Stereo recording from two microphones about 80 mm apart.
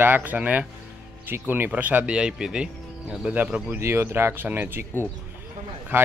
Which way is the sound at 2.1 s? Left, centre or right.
Centre.